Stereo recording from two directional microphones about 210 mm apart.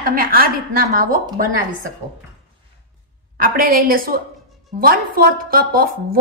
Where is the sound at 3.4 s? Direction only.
45° right (ahead or behind).